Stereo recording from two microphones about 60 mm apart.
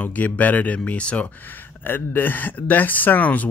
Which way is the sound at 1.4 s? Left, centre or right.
Left.